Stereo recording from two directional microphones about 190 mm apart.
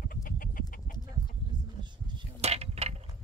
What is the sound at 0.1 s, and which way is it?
Chicken, 45° left (ahead or behind).